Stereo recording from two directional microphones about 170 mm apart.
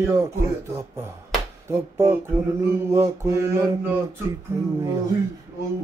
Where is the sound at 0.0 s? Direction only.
15° right (ahead or behind).